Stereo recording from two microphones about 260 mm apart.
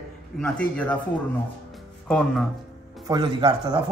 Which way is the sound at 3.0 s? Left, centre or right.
Centre.